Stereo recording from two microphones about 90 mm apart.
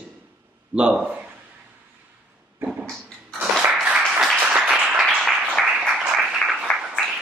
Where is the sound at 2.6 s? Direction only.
25° right (ahead or behind).